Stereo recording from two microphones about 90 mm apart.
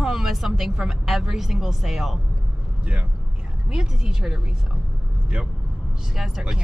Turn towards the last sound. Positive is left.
turn(degrees=-5)  # may be behind; listen again after turning